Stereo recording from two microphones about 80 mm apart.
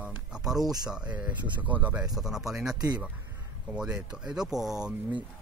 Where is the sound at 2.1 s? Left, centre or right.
Centre.